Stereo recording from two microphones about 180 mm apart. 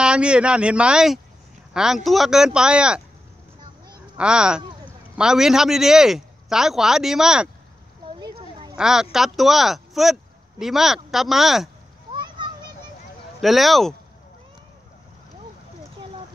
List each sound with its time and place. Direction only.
0.0 s speech: 5° right (ahead or behind)
4.2 s speech: 5° right (ahead or behind)
8.2 s a sound: 25° right (ahead or behind)
8.7 s speech: 5° right (ahead or behind)
12.1 s children playing: 25° right (ahead or behind)
13.4 s speech: centre (ahead or behind)